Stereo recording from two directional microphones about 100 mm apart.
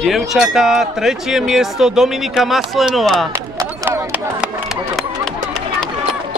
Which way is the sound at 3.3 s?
30° right (ahead or behind).